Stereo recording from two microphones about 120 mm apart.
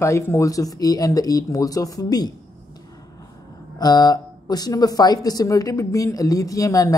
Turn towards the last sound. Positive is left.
turn(degrees=30)  # may be behind; listen again after turning